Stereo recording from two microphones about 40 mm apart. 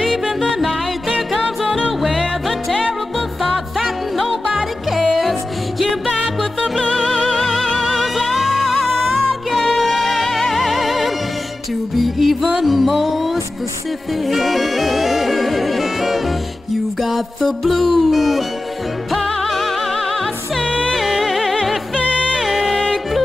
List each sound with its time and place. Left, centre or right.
0.1 s music: centre
1.9 s music: centre
3.8 s music: centre
6.6 s music: left
7.3 s music: centre
7.9 s music: centre
19.4 s music: centre
20.6 s music: left
20.9 s music: centre
22.1 s music: left
22.4 s music: centre